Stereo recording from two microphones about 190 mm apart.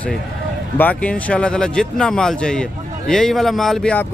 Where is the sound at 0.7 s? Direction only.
10° left (ahead or behind).